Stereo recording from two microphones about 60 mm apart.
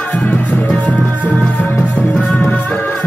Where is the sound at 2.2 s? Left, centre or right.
Left.